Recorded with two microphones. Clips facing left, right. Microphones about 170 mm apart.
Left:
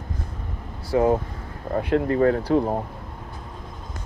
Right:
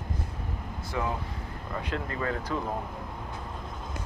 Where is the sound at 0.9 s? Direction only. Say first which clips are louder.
Left 13 dB; 35° left (ahead or behind).